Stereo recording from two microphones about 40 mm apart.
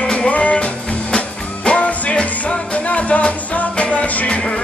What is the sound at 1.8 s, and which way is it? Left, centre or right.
Music, left.